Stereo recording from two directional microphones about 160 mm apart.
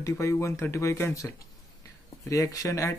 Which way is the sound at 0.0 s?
20° left (ahead or behind).